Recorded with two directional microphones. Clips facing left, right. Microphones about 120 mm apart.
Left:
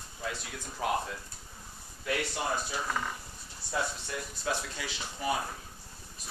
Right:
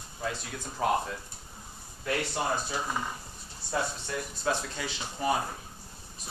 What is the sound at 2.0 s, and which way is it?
Speech, 35° right (ahead or behind).